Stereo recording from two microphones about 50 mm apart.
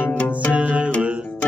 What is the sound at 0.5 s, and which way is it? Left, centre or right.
Music, right.